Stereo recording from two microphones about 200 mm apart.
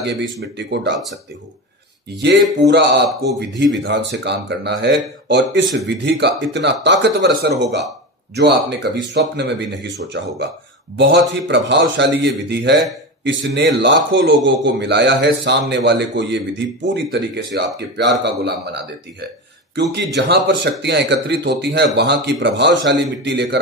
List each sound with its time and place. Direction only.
0.0 s a man's voice: 60° right (ahead or behind)
2.6 s a man's voice: 60° right (ahead or behind)